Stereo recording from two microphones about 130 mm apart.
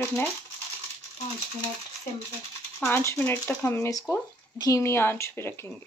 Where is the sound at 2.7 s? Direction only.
15° left (ahead or behind).